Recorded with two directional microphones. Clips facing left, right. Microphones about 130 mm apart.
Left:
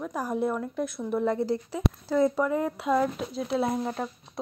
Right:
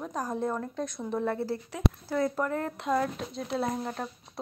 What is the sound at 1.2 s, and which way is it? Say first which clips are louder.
Speech: left 5 dB; 15° left (ahead or behind).